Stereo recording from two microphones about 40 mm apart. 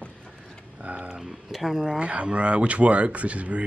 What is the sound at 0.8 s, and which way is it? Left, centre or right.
Speech, right.